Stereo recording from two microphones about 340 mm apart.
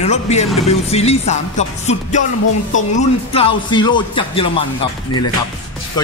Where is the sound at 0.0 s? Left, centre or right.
Centre.